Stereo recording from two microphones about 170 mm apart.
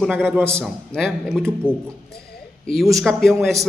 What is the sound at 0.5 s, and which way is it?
A man's voice, 5° left (ahead or behind).